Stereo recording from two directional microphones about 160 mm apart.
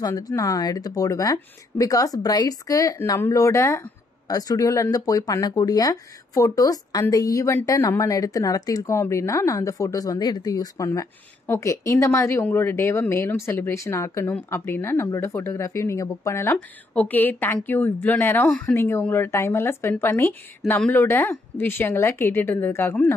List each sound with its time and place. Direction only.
0.0 s speech: 20° left (ahead or behind)